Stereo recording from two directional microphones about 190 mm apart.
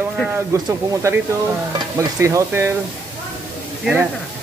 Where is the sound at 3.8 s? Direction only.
10° right (ahead or behind).